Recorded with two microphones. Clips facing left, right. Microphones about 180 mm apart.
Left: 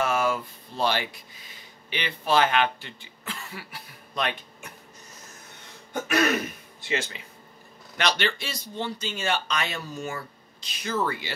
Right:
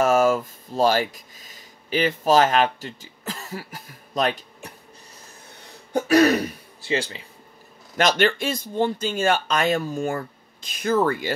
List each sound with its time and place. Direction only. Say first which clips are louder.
0.0 s speech: right 7 dB; 45° right (ahead or behind)
5.9 s speech: right 7 dB; 35° right (ahead or behind)
8.0 s speech: right 7 dB; 50° right (ahead or behind)